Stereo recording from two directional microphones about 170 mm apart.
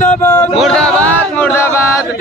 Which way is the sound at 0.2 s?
15° left (ahead or behind).